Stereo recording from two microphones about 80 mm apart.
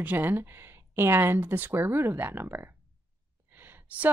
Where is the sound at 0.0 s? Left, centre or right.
Right.